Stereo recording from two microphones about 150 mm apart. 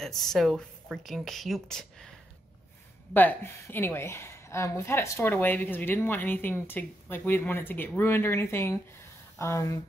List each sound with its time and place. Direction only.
0.3 s a woman's voice: centre (ahead or behind); by 9.8 s 20° left (ahead or behind)